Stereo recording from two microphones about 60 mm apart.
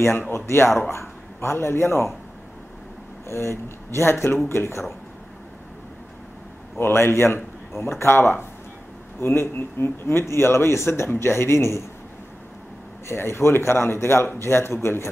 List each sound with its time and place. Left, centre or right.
0.3 s speech: left
3.3 s speech: left
6.8 s speech: left
13.1 s speech: left